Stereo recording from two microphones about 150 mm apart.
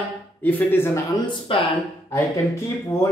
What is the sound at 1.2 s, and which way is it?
Speech, 30° left (ahead or behind).